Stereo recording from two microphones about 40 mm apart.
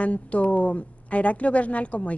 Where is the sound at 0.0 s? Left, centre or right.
Left.